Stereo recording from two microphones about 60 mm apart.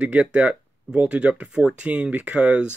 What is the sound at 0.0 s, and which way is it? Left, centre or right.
Speech, right.